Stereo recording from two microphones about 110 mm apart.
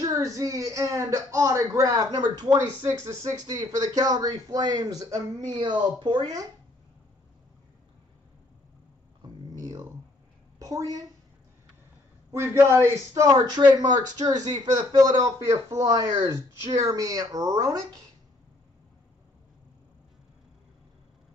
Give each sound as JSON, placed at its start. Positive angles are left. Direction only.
{"t": 0.0, "sound": "speech", "side_deg": -30}
{"t": 5.6, "sound": "speech", "side_deg": -45}
{"t": 9.2, "sound": "a sound", "side_deg": -35}
{"t": 10.6, "sound": "a woman's voice", "side_deg": -35}
{"t": 12.3, "sound": "speech", "side_deg": -25}